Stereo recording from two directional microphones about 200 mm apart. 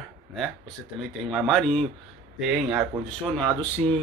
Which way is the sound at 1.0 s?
Centre (ahead or behind).